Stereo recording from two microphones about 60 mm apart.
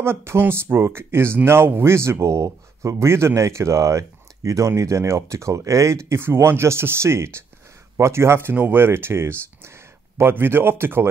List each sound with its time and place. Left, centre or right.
0.0 s speech: right
2.4 s speech: right
6.0 s speech: right